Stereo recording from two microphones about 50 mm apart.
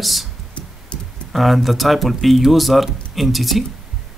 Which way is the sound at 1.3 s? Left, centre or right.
Centre.